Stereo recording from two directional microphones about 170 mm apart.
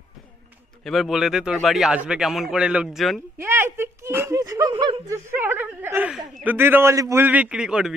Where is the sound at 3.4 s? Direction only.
15° right (ahead or behind); by 5.0 s 30° right (ahead or behind).